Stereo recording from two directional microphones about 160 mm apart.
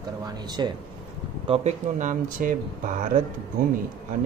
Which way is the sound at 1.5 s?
45° right (ahead or behind).